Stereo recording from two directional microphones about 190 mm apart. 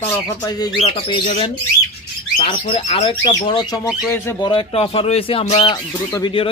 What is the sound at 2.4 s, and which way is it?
Speech, 30° left (ahead or behind).